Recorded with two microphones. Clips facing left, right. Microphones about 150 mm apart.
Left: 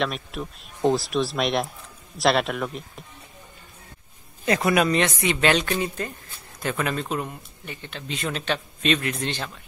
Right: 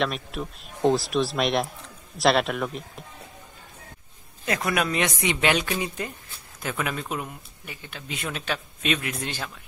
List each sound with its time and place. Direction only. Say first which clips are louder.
0.0 s speech: even; centre (ahead or behind)
4.5 s speech: left 5 dB; centre (ahead or behind)
4.9 s speech: left 3 dB; 15° right (ahead or behind)